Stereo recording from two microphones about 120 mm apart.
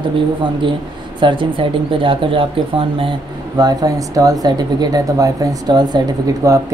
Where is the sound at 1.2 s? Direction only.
40° right (ahead or behind).